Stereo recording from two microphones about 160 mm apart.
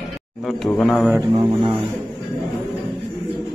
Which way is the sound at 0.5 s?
5° left (ahead or behind).